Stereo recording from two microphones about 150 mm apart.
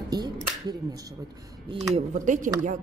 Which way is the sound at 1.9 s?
55° right (ahead or behind).